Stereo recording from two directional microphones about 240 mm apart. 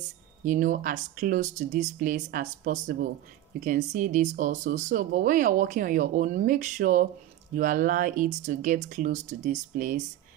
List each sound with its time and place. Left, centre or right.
0.5 s speech: right